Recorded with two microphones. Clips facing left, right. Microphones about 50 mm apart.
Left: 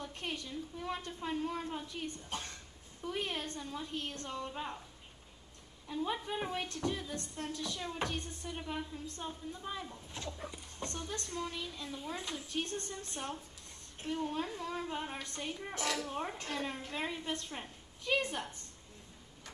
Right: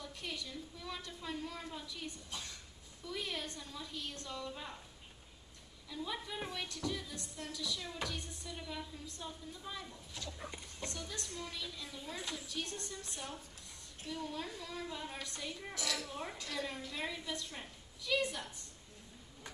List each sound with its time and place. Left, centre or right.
0.0 s a woman's voice: left
5.9 s a woman's voice: left